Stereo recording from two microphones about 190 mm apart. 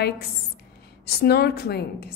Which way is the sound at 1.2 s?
55° left (ahead or behind).